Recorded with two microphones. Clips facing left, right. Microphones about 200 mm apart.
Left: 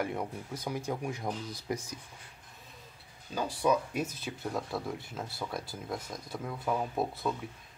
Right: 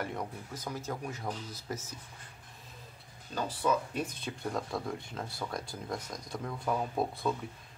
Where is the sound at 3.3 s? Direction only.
10° left (ahead or behind).